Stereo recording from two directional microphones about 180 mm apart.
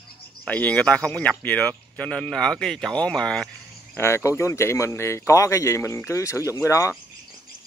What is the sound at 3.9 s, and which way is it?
Speech, 15° left (ahead or behind).